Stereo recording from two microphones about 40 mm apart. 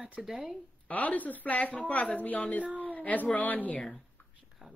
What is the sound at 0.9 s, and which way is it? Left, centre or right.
Speech, left.